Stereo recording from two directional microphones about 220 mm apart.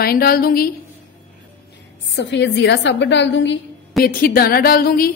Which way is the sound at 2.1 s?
55° left (ahead or behind).